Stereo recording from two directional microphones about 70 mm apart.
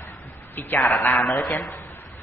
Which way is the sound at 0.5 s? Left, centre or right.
Left.